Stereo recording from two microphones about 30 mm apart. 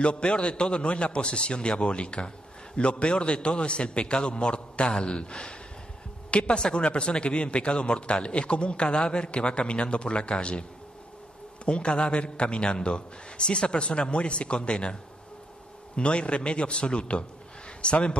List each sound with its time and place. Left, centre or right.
0.0 s a man's voice: left
11.6 s a man's voice: left
16.0 s a man's voice: left